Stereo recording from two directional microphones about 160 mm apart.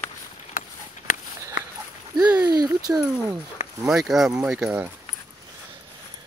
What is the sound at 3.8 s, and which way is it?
Speech, centre (ahead or behind).